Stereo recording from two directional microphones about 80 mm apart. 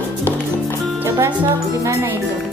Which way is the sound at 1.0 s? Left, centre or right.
Right.